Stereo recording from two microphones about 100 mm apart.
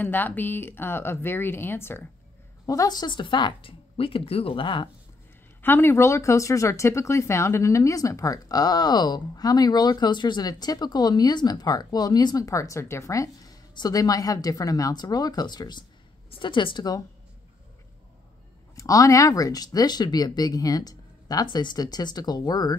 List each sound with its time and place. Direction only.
0.0 s speech: 20° left (ahead or behind)
2.6 s a woman's voice: 35° left (ahead or behind); by 3.7 s 50° left (ahead or behind)
3.9 s speech: 70° left (ahead or behind)
5.6 s a woman's voice: 20° left (ahead or behind); by 17.0 s 45° left (ahead or behind)
18.8 s speech: 35° left (ahead or behind)